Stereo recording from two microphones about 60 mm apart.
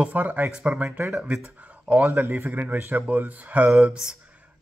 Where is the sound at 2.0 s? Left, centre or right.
Right.